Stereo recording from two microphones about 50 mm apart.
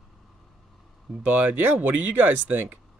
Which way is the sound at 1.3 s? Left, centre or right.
Right.